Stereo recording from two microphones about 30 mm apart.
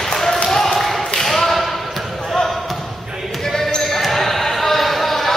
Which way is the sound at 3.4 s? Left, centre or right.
Centre.